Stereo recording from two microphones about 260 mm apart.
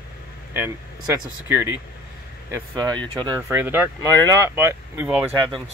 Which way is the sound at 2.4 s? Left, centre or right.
Centre.